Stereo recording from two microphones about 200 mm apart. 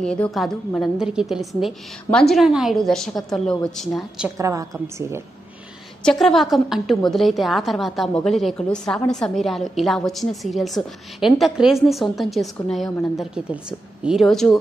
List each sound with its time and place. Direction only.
0.0 s a woman's voice: 5° left (ahead or behind)
4.4 s a woman's voice: 15° right (ahead or behind)
6.0 s a woman's voice: centre (ahead or behind)